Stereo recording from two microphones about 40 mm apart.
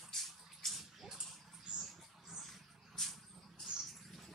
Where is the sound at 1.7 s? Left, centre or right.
Right.